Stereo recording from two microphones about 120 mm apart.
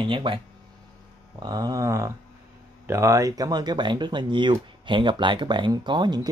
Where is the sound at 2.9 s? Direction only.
25° right (ahead or behind).